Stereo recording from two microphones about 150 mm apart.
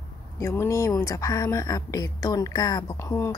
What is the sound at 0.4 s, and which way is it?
A woman's voice, 15° left (ahead or behind).